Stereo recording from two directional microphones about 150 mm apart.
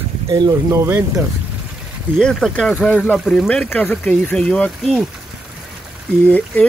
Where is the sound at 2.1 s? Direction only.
5° left (ahead or behind).